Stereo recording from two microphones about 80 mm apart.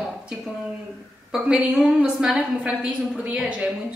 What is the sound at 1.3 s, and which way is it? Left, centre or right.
A woman's voice, centre.